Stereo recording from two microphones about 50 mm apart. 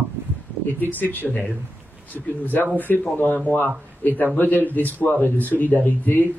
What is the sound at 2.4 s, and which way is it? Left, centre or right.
A man's voice, left.